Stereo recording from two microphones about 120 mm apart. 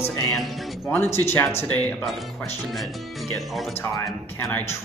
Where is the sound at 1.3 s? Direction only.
20° left (ahead or behind).